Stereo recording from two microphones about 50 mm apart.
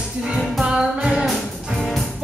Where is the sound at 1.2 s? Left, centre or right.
Centre.